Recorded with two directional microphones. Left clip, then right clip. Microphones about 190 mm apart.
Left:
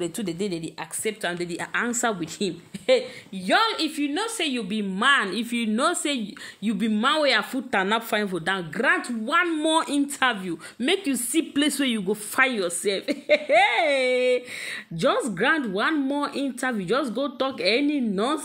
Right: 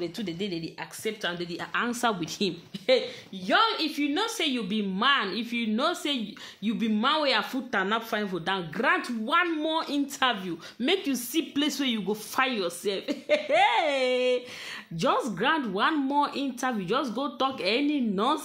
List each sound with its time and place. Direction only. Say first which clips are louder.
0.0 s a woman's voice: left 4 dB; 30° left (ahead or behind)
1.7 s a woman's voice: left 1 dB; 15° left (ahead or behind)
3.4 s a woman's voice: left 2 dB; 30° left (ahead or behind)
4.0 s a woman's voice: left 1 dB; 15° left (ahead or behind)
9.6 s a woman's voice: left 6 dB; 25° left (ahead or behind)
9.9 s a woman's voice: left 3 dB; 15° left (ahead or behind)